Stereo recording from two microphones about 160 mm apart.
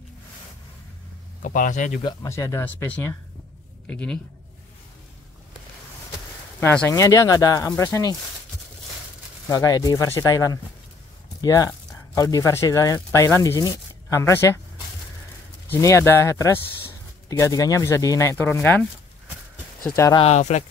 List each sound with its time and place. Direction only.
1.4 s speech: 55° left (ahead or behind)
2.2 s speech: 20° left (ahead or behind)
6.6 s speech: 10° left (ahead or behind)
7.0 s speech: 20° left (ahead or behind)
9.5 s speech: 20° left (ahead or behind)
15.7 s speech: 15° left (ahead or behind)
20.2 s speech: 45° left (ahead or behind)